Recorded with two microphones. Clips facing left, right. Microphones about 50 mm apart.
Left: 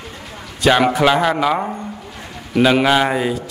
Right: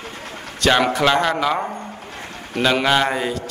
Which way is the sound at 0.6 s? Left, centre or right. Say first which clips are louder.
Left 3 dB; centre.